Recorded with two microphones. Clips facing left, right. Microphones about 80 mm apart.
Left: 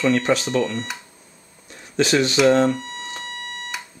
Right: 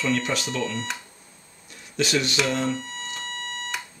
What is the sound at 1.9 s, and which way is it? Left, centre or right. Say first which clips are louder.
Speech: left 6 dB; left.